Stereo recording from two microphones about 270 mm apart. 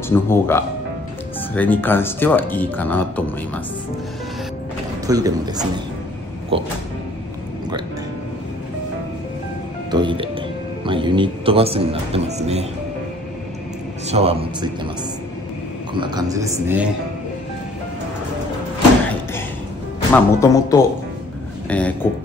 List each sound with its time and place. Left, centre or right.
0.1 s speech: centre
5.0 s a man's voice: centre
9.8 s speech: centre
14.0 s speech: right
15.9 s a man's voice: centre
20.1 s speech: centre